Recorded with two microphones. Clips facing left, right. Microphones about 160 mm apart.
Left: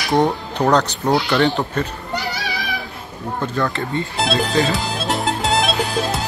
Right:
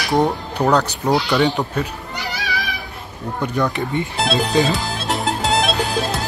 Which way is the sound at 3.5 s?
15° right (ahead or behind).